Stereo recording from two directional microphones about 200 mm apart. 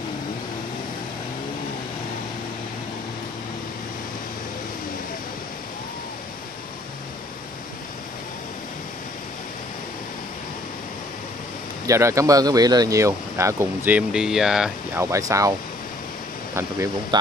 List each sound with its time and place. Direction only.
11.8 s speech: 15° right (ahead or behind)
15.0 s speech: 15° right (ahead or behind)
16.5 s speech: 15° right (ahead or behind)